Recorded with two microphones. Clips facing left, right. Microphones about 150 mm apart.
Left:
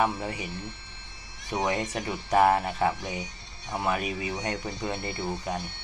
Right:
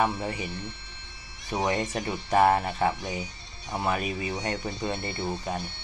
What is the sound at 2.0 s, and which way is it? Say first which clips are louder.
Speech: left 1 dB; 10° left (ahead or behind).